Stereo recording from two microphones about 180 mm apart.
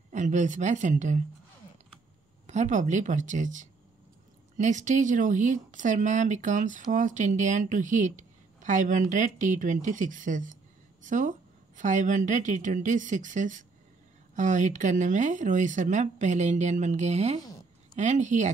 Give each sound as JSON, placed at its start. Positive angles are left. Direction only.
{"t": 0.1, "sound": "a woman's voice", "side_deg": -40}
{"t": 2.4, "sound": "a woman's voice", "side_deg": -40}